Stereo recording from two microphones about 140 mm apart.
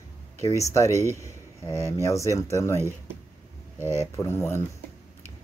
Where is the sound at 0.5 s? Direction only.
20° left (ahead or behind).